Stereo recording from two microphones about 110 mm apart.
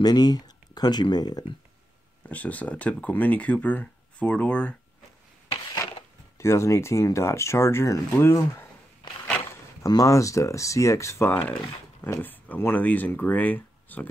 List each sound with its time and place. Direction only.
0.0 s speech: 40° left (ahead or behind)
2.2 s speech: 15° left (ahead or behind)
6.3 s speech: 25° left (ahead or behind)
9.8 s speech: 30° left (ahead or behind); by 14.0 s 15° left (ahead or behind)